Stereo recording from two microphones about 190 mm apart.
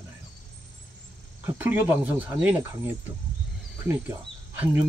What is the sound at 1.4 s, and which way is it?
Speech, 10° right (ahead or behind).